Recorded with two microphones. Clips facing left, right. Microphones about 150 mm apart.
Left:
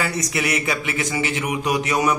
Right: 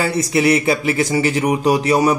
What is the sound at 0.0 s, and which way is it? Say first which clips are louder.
A man's voice: right 8 dB; 30° right (ahead or behind).